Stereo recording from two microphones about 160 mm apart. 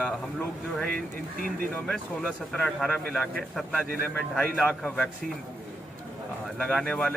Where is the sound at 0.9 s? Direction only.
65° right (ahead or behind).